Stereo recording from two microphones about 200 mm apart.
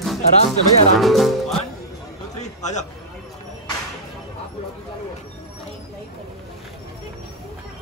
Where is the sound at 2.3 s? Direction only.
35° left (ahead or behind).